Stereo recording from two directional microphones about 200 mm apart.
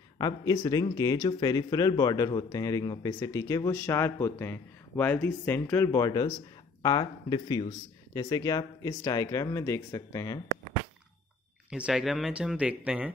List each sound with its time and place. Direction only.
0.8 s speech: 20° left (ahead or behind)
11.7 s speech: 5° right (ahead or behind)